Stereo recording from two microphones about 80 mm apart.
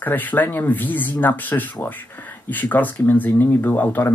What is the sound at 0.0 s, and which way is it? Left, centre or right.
Speech, left.